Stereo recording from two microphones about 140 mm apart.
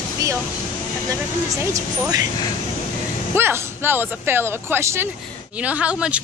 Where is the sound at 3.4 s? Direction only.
15° right (ahead or behind).